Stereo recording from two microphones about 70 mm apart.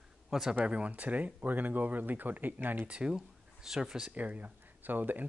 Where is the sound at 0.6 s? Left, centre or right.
Centre.